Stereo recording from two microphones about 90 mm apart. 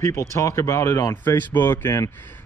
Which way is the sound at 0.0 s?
35° left (ahead or behind).